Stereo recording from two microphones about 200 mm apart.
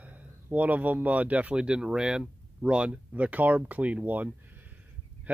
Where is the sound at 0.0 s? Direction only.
5° right (ahead or behind).